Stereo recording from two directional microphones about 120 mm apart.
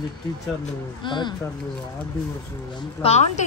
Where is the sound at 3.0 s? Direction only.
65° left (ahead or behind).